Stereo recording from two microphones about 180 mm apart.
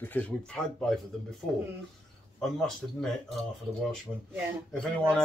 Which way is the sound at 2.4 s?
5° left (ahead or behind).